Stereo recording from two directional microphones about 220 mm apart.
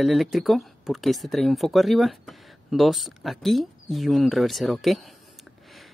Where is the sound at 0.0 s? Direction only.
Centre (ahead or behind).